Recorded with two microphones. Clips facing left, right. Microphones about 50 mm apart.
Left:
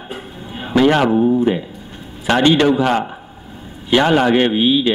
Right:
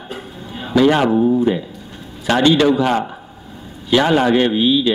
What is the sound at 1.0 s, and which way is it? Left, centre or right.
A man's voice, centre.